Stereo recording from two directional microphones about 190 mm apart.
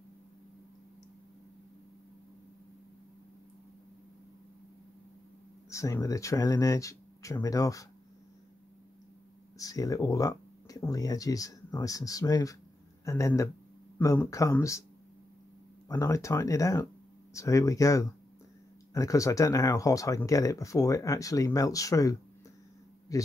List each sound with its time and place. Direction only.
5.7 s speech: 15° left (ahead or behind)
9.6 s speech: 20° left (ahead or behind)
15.9 s speech: 15° left (ahead or behind)